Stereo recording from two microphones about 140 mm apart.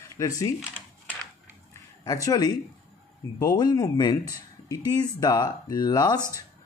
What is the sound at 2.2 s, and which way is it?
Speech, 30° left (ahead or behind).